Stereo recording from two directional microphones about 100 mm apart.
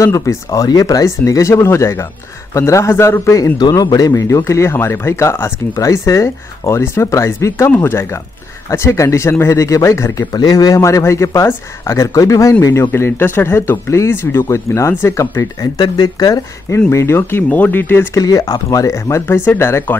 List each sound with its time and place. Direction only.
0.0 s speech: 30° left (ahead or behind)
3.5 s speech: 45° left (ahead or behind)
15.8 s speech: 40° left (ahead or behind)
16.9 s speech: 25° left (ahead or behind)
18.1 s speech: 35° left (ahead or behind); by 20.0 s 20° left (ahead or behind)